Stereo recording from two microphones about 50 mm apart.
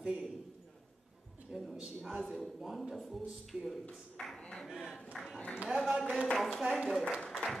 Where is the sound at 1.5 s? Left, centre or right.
Centre.